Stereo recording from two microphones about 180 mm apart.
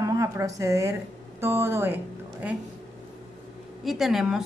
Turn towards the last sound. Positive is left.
turn(degrees=0)  # may be behind; listen again after turning